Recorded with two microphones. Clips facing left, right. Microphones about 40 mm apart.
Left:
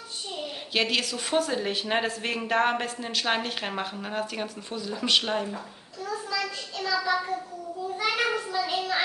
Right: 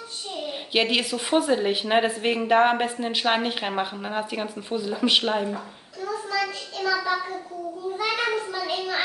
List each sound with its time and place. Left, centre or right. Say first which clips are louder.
0.7 s a woman's voice: right 3 dB; centre
6.3 s child singing: right 4 dB; centre
8.0 s child singing: right 1 dB; centre